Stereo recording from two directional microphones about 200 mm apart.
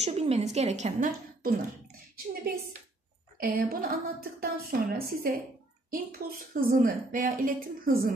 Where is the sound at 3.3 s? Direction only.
50° right (ahead or behind).